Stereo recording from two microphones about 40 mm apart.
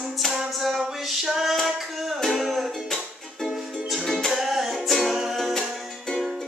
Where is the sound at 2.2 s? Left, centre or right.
Centre.